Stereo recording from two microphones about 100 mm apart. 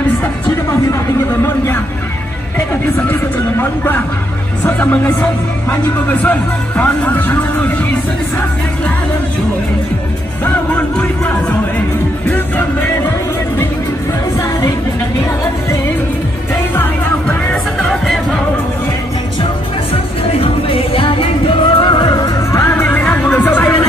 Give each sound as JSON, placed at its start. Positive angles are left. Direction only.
{"t": 3.1, "sound": "vehicle", "side_deg": 20}
{"t": 4.6, "sound": "speech", "side_deg": 15}
{"t": 10.4, "sound": "music", "side_deg": 15}
{"t": 16.7, "sound": "music", "side_deg": 20}
{"t": 17.7, "sound": "music", "side_deg": 0}
{"t": 20.3, "sound": "music", "side_deg": 70}
{"t": 22.5, "sound": "music", "side_deg": 25}